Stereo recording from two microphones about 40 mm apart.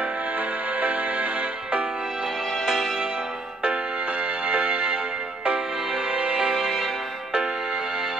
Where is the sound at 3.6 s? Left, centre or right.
Right.